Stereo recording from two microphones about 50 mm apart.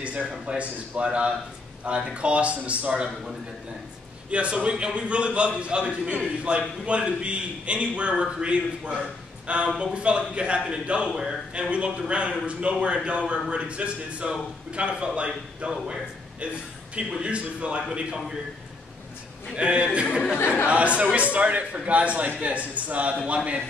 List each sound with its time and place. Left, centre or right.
0.5 s a man's voice: right
4.3 s a man's voice: right
12.0 s a man's voice: right
19.5 s a man's voice: right